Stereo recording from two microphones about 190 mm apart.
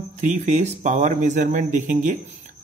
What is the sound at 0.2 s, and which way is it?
Speech, 40° right (ahead or behind).